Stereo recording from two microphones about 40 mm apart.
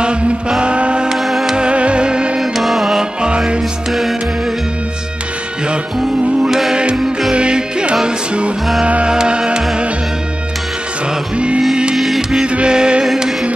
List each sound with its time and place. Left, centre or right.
0.0 s music: right
1.0 s music: centre
1.6 s music: right
2.5 s music: centre
3.0 s music: right
6.7 s music: right
8.8 s music: right
9.1 s music: centre
11.3 s music: right
11.9 s music: centre
12.2 s music: centre
12.4 s music: right